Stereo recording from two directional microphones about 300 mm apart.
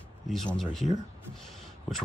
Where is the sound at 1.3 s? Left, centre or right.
Centre.